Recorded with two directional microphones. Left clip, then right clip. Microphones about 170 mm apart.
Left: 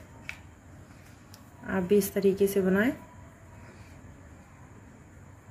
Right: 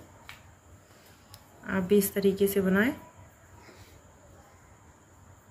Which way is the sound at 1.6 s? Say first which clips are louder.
Even; 35° left (ahead or behind).